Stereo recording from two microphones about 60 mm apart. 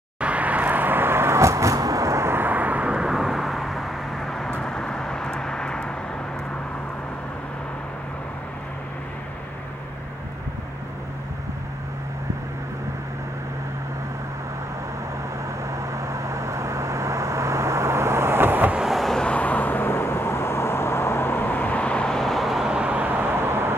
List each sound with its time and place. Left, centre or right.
0.2 s vehicle: right
2.2 s vehicle: right
3.1 s vehicle: centre
15.7 s vehicle: right
18.9 s vehicle: centre
19.1 s vehicle: centre
22.7 s vehicle: centre